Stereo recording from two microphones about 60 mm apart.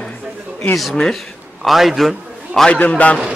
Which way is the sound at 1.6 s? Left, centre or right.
Centre.